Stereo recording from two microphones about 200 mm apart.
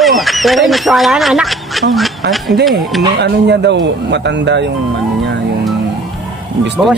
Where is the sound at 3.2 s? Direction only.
55° right (ahead or behind).